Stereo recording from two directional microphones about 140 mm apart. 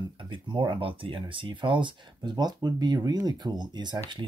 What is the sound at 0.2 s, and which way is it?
Speech, 35° right (ahead or behind).